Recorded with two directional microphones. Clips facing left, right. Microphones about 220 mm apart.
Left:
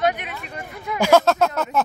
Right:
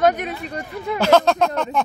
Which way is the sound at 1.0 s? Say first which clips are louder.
Even; 10° left (ahead or behind).